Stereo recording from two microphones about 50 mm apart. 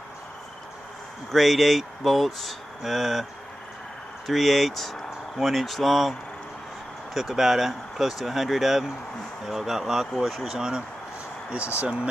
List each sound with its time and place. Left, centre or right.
1.3 s speech: centre
4.3 s speech: centre
7.2 s speech: centre
11.8 s speech: right